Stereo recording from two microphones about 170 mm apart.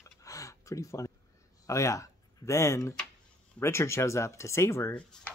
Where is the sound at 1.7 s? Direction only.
20° left (ahead or behind).